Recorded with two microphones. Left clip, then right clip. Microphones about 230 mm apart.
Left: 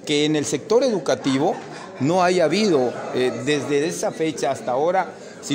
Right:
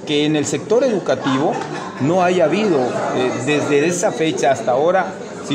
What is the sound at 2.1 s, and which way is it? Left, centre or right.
A man's voice, left.